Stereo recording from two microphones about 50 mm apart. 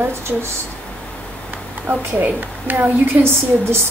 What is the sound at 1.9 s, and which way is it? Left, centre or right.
A woman's voice, right.